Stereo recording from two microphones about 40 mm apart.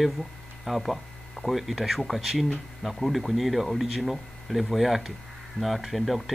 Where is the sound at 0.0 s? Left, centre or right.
Centre.